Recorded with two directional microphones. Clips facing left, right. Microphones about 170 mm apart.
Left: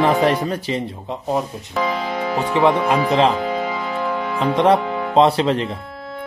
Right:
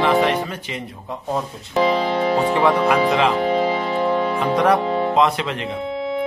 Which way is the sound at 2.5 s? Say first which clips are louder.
Left 4 dB; 20° left (ahead or behind).